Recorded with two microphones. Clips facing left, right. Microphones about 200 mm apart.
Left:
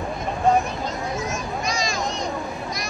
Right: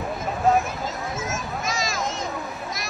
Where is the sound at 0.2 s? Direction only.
Centre (ahead or behind).